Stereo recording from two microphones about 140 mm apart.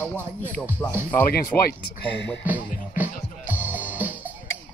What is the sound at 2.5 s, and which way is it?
Music, 10° right (ahead or behind).